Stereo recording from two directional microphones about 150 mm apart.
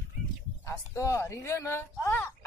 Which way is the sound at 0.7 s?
20° left (ahead or behind).